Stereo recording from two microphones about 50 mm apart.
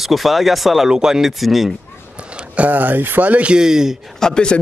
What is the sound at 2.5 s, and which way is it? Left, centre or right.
Speech, right.